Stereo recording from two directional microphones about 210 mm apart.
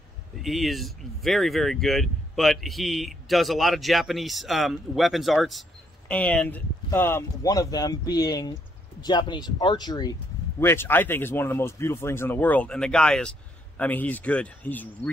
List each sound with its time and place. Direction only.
0.4 s speech: centre (ahead or behind)